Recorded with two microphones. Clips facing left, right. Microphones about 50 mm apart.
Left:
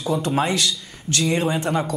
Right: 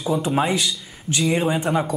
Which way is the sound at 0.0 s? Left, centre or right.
Centre.